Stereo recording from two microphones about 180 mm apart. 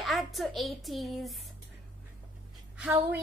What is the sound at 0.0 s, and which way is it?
A woman's voice, centre (ahead or behind).